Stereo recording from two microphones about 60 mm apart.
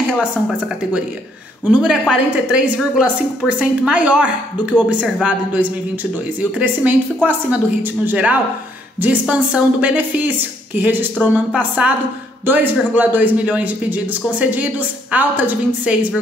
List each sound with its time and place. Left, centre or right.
1.7 s a woman's voice: centre; by 8.2 s right
9.3 s a woman's voice: right
11.3 s a woman's voice: centre
12.4 s a woman's voice: right